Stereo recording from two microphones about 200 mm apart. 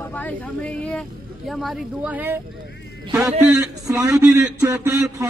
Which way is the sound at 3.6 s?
15° right (ahead or behind).